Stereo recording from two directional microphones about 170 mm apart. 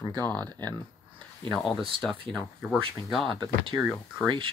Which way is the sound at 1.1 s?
30° right (ahead or behind).